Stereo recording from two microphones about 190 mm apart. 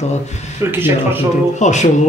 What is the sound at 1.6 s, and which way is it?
Speech, 40° left (ahead or behind).